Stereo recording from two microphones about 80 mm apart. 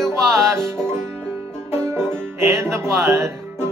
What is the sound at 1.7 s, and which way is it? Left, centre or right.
Music, right.